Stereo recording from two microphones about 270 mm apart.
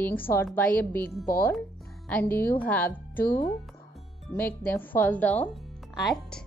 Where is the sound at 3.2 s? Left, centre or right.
Left.